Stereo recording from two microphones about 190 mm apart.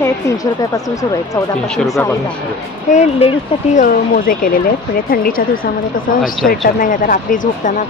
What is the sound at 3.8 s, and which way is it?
Speech, 50° left (ahead or behind).